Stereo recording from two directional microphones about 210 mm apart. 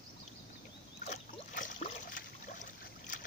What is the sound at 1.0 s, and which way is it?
Boat, 35° left (ahead or behind).